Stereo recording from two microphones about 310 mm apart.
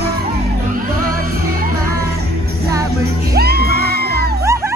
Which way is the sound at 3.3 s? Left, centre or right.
Right.